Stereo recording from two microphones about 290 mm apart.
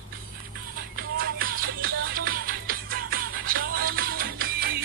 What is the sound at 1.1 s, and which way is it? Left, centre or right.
Music, right.